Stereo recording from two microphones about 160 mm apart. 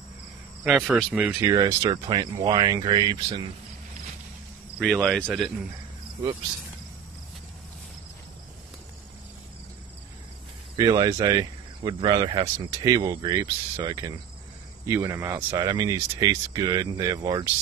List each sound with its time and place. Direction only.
0.7 s speech: centre (ahead or behind)
1.4 s speech: 20° right (ahead or behind)
4.8 s speech: 5° left (ahead or behind)
10.8 s speech: 25° right (ahead or behind)